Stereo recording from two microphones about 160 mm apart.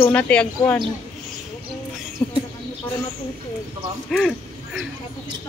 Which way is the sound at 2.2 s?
30° left (ahead or behind).